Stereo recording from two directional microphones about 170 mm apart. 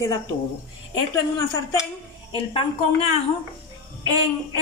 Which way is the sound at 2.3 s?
35° left (ahead or behind).